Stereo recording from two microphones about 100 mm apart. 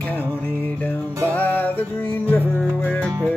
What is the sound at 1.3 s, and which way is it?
Music, 20° left (ahead or behind).